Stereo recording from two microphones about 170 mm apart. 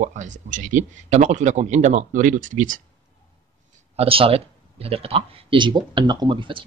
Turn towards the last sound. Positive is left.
turn(degrees=-30)  # may be behind; listen again after turning